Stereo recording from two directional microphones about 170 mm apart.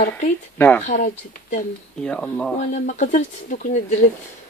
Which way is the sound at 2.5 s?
45° left (ahead or behind).